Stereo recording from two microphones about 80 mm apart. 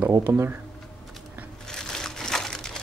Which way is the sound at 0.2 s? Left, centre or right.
Right.